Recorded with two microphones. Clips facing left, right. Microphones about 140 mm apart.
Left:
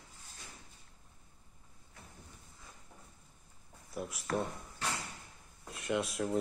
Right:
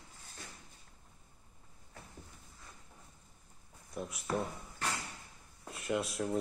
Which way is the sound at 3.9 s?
Centre (ahead or behind).